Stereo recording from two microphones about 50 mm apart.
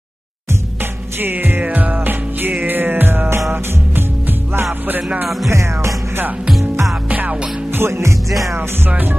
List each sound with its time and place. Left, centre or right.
1.2 s music: right
1.6 s music: right
5.5 s music: right
7.1 s music: right
7.7 s music: right
8.5 s music: right